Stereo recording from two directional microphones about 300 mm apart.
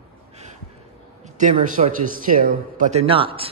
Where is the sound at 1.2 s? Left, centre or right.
Right.